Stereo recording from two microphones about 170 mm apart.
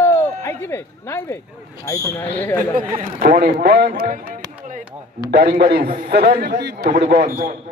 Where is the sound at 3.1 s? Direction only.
60° right (ahead or behind).